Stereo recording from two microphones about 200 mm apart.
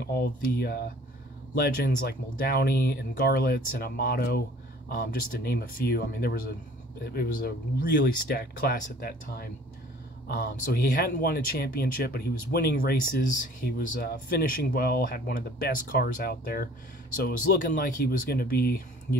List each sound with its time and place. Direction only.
0.0 s speech: 50° left (ahead or behind)
17.7 s speech: 50° left (ahead or behind)